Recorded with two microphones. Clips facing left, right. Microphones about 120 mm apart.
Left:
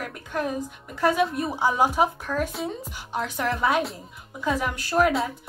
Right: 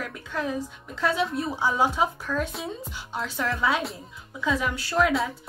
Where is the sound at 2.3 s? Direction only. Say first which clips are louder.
Left 1 dB; 40° left (ahead or behind).